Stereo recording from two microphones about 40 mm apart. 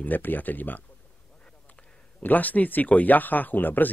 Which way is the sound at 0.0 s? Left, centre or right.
Left.